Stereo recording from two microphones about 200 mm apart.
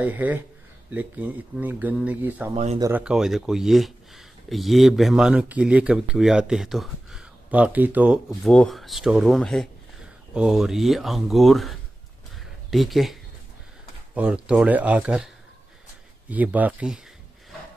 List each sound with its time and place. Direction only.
0.0 s speech: 10° right (ahead or behind)
2.5 s speech: 30° right (ahead or behind)
2.8 s speech: 5° right (ahead or behind)
12.7 s speech: centre (ahead or behind)
16.3 s speech: 10° right (ahead or behind)